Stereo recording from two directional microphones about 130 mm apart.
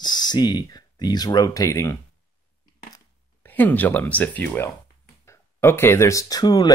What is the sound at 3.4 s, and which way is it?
Speech, 15° left (ahead or behind).